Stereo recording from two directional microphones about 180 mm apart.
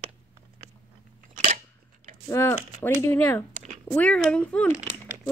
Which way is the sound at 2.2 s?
15° left (ahead or behind).